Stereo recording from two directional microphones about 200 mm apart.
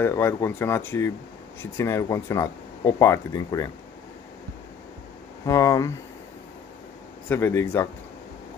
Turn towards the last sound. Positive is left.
turn(degrees=10)  # may be behind; listen again after turning